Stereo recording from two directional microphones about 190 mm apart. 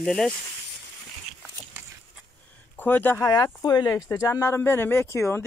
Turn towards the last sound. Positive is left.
turn(degrees=15)  # may be behind; listen again after turning